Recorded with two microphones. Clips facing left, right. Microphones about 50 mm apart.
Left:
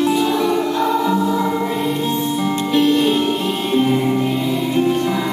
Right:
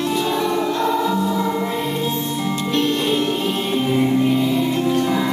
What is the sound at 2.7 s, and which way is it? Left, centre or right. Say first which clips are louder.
Music: left 5 dB; centre.